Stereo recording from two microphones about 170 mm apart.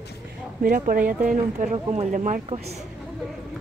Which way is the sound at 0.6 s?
55° right (ahead or behind).